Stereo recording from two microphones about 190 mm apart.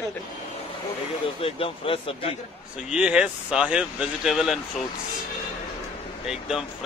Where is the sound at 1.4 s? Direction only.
30° left (ahead or behind).